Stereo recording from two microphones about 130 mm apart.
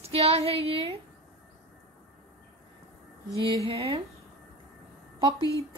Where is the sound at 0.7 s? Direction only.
50° right (ahead or behind).